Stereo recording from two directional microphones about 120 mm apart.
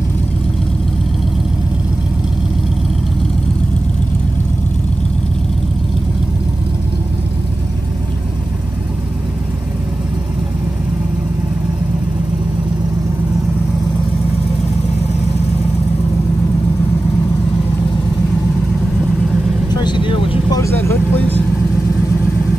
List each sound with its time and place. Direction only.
19.7 s vehicle: 40° left (ahead or behind)
20.5 s vehicle: 25° left (ahead or behind)